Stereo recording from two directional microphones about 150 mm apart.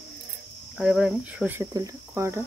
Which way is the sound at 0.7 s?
5° right (ahead or behind).